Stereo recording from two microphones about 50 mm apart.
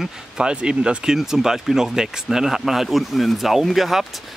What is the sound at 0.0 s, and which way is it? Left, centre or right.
Speech, centre.